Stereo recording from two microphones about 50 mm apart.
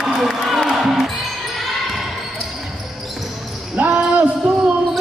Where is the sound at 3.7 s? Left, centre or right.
Right.